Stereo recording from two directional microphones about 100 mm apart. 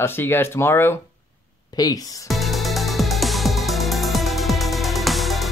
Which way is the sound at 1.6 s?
40° left (ahead or behind).